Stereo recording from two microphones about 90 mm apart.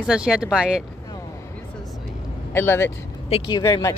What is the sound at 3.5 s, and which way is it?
Speech, 50° left (ahead or behind).